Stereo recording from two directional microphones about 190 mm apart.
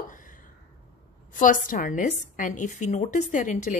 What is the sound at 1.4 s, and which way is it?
A woman's voice, 45° left (ahead or behind).